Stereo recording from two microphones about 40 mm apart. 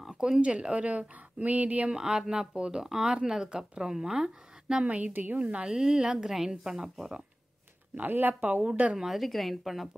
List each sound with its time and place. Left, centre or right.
0.1 s speech: right
1.9 s speech: centre
4.8 s speech: right
5.1 s speech: right
5.4 s speech: right
6.1 s speech: centre
7.9 s speech: right
8.6 s speech: right
8.9 s speech: centre